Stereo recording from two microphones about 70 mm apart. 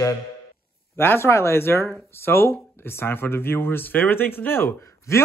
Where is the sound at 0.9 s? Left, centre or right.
Left.